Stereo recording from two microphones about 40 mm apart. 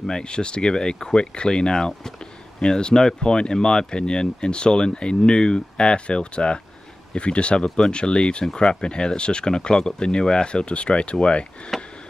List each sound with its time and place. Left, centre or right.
0.0 s speech: left
11.7 s sniff: centre